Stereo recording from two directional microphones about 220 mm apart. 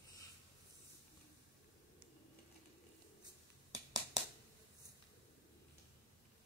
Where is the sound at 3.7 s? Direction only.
15° right (ahead or behind).